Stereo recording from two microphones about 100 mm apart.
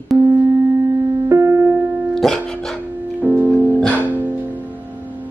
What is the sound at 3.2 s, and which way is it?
Music, 15° right (ahead or behind).